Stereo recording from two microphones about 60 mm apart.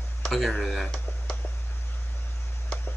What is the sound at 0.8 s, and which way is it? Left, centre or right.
Tick, centre.